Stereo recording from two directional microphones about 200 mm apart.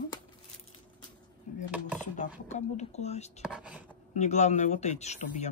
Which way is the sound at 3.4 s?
5° right (ahead or behind).